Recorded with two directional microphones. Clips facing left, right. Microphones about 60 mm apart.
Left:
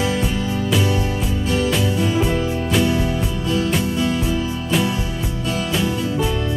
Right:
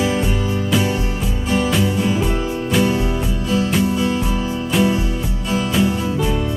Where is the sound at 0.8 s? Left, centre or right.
Centre.